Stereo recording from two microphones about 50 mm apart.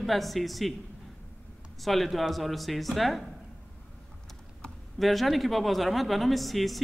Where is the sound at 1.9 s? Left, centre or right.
Centre.